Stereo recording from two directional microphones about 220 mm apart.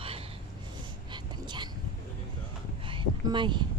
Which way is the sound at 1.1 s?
20° right (ahead or behind).